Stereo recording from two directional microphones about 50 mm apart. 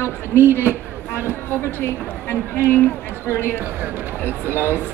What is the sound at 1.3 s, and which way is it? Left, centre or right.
Speech, left.